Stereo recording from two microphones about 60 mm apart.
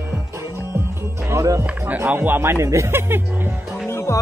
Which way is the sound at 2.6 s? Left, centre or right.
Right.